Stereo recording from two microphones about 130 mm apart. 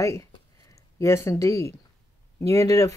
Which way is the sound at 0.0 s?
25° left (ahead or behind).